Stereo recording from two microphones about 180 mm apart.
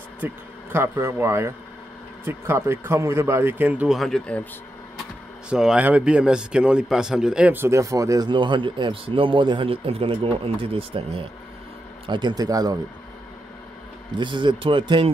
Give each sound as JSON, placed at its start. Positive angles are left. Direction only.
{"t": 0.7, "sound": "speech", "side_deg": -15}
{"t": 5.5, "sound": "a man's voice", "side_deg": -5}
{"t": 14.1, "sound": "a man's voice", "side_deg": -25}